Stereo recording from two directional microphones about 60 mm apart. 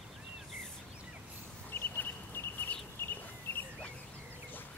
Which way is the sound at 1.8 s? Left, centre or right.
Left.